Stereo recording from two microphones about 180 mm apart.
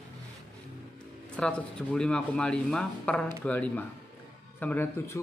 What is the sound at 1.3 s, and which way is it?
Speech, 5° left (ahead or behind).